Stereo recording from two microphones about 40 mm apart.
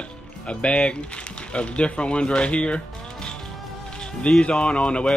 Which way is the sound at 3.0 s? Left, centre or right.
Centre.